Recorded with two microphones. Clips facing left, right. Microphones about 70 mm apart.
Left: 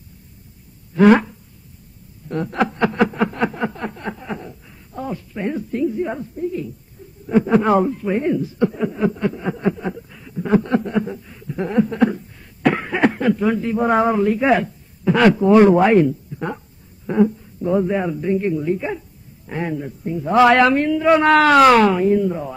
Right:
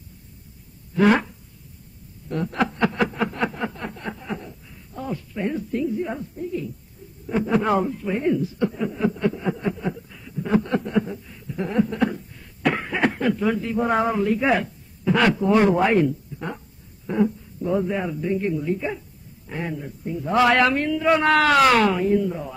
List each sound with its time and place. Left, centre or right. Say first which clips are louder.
0.9 s speech: left 6 dB; left
2.2 s a sound: left 3 dB; left
4.9 s speech: left 2 dB; left
9.8 s a sound: left 2 dB; left
13.2 s speech: left 4 dB; left
14.2 s speech: left 4 dB; left
21.2 s speech: left 5 dB; left
21.8 s speech: left 4 dB; left